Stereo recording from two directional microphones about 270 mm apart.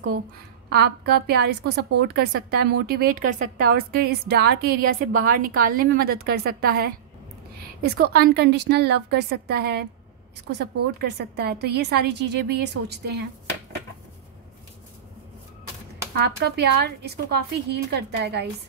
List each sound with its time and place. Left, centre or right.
0.7 s a woman's voice: right
16.2 s a woman's voice: right